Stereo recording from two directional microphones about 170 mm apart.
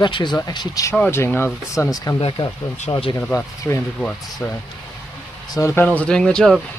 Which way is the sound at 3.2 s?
5° left (ahead or behind).